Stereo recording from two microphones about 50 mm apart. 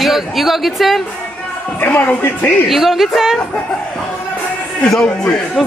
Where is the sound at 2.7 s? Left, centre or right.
Centre.